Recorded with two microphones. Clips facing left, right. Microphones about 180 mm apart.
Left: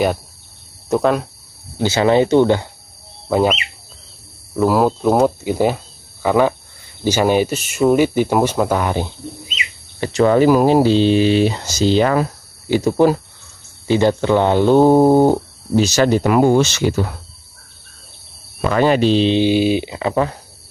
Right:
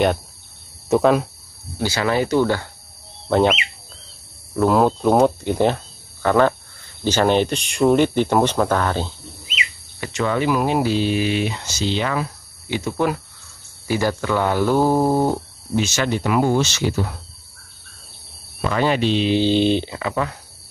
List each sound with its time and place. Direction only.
0.8 s speech: centre (ahead or behind)
1.8 s speech: 25° left (ahead or behind)
3.3 s speech: 5° left (ahead or behind)
4.6 s speech: 5° left (ahead or behind)
9.9 s speech: 35° left (ahead or behind); by 17.1 s 60° left (ahead or behind)
18.7 s speech: 45° left (ahead or behind)
19.3 s speech: 10° left (ahead or behind)
20.0 s speech: 30° left (ahead or behind)